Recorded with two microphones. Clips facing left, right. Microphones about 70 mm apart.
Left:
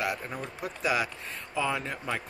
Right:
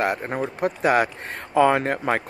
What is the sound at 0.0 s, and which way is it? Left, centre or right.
Speech, right.